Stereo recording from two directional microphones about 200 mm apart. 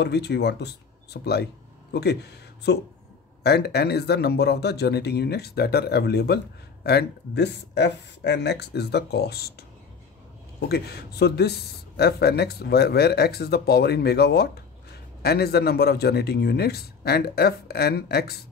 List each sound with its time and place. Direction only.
0.0 s speech: 55° left (ahead or behind)
10.7 s speech: 55° left (ahead or behind)